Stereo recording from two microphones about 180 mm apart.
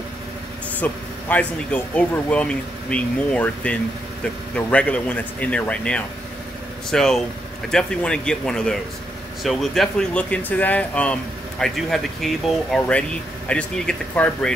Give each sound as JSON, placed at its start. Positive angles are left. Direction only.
{"t": 0.7, "sound": "speech", "side_deg": 10}